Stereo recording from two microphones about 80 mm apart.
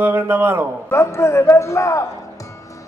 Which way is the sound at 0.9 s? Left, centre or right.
Left.